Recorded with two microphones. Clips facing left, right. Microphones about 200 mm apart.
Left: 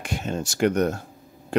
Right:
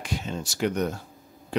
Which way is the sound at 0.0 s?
50° left (ahead or behind).